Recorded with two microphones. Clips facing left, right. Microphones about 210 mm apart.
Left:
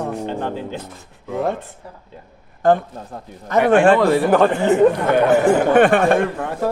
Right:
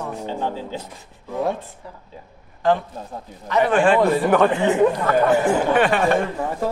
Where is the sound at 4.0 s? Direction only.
75° left (ahead or behind).